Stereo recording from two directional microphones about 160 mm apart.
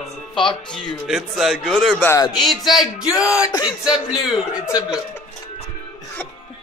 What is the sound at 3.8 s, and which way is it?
Speech, 5° right (ahead or behind).